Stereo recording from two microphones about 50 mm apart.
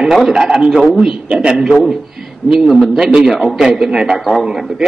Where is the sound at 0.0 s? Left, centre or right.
Centre.